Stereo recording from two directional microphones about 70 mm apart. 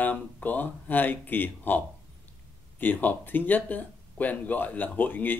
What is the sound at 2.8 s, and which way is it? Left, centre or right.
Speech, left.